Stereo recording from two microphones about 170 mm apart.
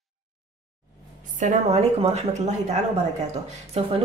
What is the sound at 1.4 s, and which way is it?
A woman's voice, 40° right (ahead or behind).